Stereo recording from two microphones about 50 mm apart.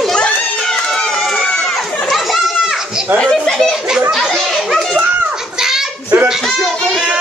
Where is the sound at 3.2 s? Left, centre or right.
Centre.